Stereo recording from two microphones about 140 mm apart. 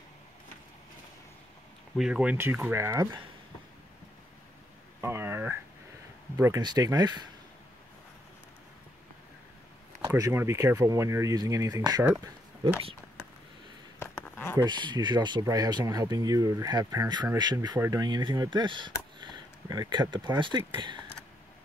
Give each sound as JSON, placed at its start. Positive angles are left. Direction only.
{"t": 2.0, "sound": "speech", "side_deg": -5}
{"t": 2.3, "sound": "speech", "side_deg": -15}
{"t": 5.0, "sound": "a sound", "side_deg": -15}
{"t": 6.3, "sound": "speech", "side_deg": -25}
{"t": 10.0, "sound": "speech", "side_deg": -20}
{"t": 13.9, "sound": "a sound", "side_deg": 15}
{"t": 14.6, "sound": "speech", "side_deg": -35}
{"t": 17.7, "sound": "speech", "side_deg": -20}
{"t": 18.0, "sound": "speech", "side_deg": -30}